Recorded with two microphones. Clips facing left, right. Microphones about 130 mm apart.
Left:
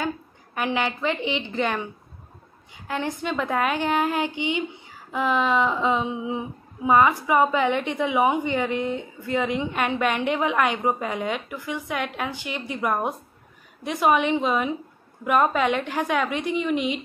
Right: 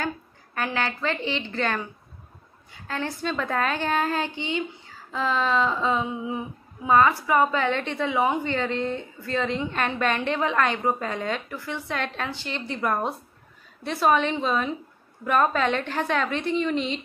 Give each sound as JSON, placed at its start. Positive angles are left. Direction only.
{"t": 0.6, "sound": "a woman's voice", "side_deg": 15}